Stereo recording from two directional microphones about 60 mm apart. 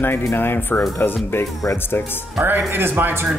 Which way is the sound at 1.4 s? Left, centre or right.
Left.